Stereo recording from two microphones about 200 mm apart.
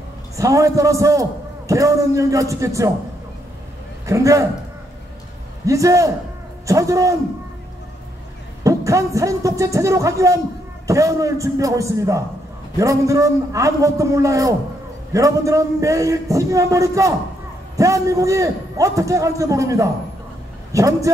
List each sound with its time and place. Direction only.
0.4 s a man's voice: 15° right (ahead or behind)
4.0 s a man's voice: 15° right (ahead or behind)
5.7 s a man's voice: 15° right (ahead or behind)
8.6 s a man's voice: 15° right (ahead or behind)